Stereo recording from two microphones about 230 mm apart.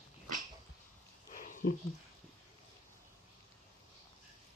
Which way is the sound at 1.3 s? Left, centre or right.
Left.